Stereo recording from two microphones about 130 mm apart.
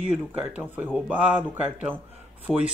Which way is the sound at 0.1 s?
10° right (ahead or behind).